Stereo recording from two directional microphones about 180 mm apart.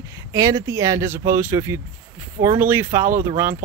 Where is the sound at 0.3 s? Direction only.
15° right (ahead or behind).